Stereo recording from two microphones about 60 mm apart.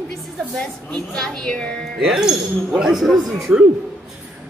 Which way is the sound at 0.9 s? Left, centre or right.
Centre.